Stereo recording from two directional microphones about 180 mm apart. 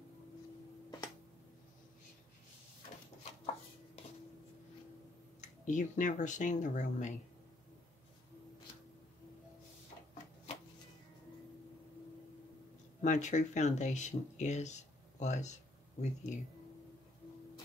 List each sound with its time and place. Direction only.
4.0 s a sound: 35° left (ahead or behind)
5.7 s speech: 45° left (ahead or behind)
13.0 s speech: 45° left (ahead or behind)